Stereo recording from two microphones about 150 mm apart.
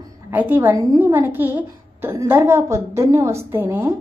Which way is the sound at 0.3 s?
15° right (ahead or behind).